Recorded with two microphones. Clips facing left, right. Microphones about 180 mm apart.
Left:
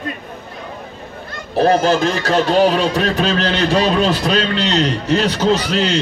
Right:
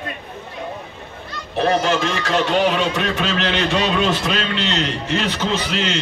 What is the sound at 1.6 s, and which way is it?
A man's voice, 35° left (ahead or behind).